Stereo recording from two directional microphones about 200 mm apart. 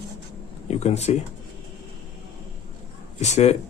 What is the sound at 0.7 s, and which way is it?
Speech, 35° left (ahead or behind).